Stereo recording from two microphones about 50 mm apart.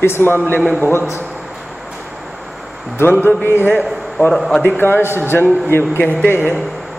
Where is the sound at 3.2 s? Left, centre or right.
Left.